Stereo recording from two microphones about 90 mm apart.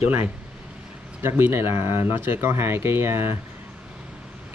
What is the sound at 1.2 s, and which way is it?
Speech, 25° right (ahead or behind).